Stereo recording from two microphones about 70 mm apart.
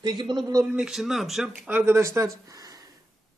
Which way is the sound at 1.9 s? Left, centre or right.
Right.